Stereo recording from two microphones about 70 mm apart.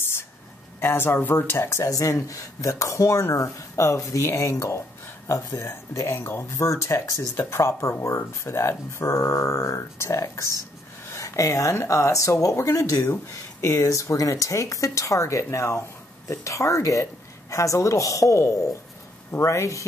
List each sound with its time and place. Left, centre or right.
0.7 s speech: left